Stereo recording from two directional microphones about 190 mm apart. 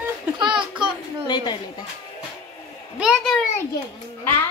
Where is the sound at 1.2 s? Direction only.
20° left (ahead or behind).